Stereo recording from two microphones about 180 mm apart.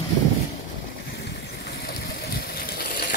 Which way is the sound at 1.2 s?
65° left (ahead or behind).